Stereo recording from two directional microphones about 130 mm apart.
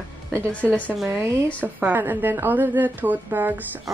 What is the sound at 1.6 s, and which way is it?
A woman's voice, 15° right (ahead or behind).